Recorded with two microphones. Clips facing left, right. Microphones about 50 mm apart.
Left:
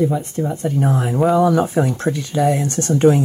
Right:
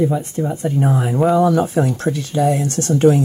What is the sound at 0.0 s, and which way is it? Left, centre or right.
Speech, centre.